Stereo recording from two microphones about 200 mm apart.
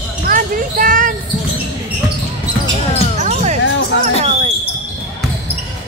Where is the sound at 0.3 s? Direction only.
45° right (ahead or behind).